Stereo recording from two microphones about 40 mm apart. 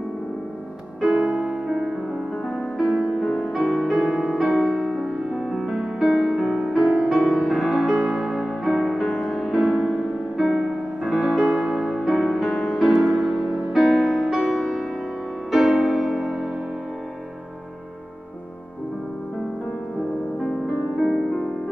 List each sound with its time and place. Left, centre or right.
1.0 s music: centre
12.4 s music: centre
13.7 s music: centre
21.0 s music: centre